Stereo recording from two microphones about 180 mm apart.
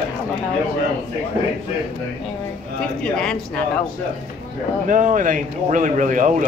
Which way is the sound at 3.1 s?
5° left (ahead or behind).